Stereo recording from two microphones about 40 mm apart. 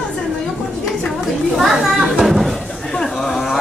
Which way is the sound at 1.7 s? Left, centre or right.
Centre.